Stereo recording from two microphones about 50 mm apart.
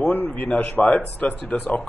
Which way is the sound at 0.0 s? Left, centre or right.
Left.